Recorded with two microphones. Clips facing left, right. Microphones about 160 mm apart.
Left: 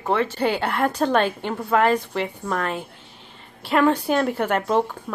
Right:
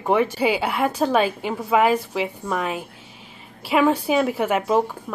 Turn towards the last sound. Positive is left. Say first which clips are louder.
# right 1 dB
turn(degrees=-5)  # may be behind; listen again after turning